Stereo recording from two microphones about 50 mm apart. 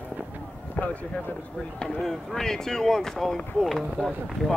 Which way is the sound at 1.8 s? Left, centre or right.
Centre.